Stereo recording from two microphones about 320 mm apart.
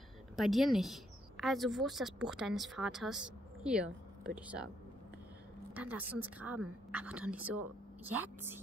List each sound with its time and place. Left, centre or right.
0.4 s a woman's voice: centre
5.8 s a woman's voice: centre